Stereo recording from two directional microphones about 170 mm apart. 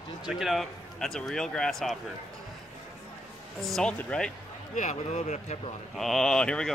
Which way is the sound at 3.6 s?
5° left (ahead or behind).